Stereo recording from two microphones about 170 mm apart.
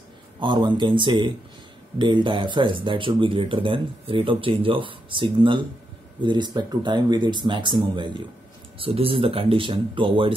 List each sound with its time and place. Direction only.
0.4 s speech: 25° right (ahead or behind)